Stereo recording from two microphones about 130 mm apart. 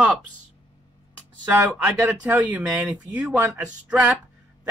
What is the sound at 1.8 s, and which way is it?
Speech, 15° right (ahead or behind).